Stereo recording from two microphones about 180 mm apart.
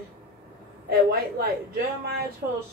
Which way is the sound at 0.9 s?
60° right (ahead or behind).